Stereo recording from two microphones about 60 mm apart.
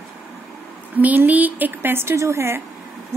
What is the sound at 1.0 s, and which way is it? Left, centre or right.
A woman's voice, right.